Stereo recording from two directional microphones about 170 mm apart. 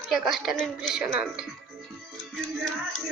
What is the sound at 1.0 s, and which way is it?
Music, 5° right (ahead or behind).